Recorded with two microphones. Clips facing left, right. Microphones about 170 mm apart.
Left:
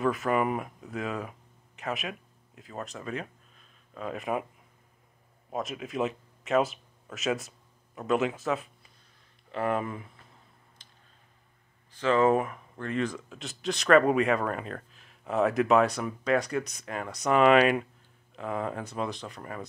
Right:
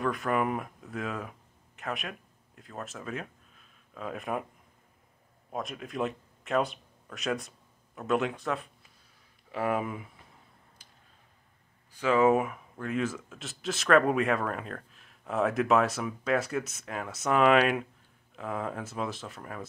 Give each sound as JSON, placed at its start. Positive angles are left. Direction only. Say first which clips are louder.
{"t": 0.0, "sound": "speech", "louder": "left 2 dB", "side_deg": 0}
{"t": 5.5, "sound": "speech", "louder": "left 3 dB", "side_deg": 0}
{"t": 10.8, "sound": "a sound", "louder": "even", "side_deg": -10}
{"t": 11.9, "sound": "speech", "louder": "even", "side_deg": -10}